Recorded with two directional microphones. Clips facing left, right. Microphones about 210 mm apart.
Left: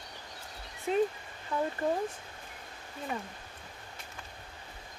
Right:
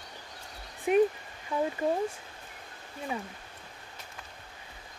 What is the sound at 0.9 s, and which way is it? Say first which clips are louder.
Speech: right 5 dB; 15° right (ahead or behind).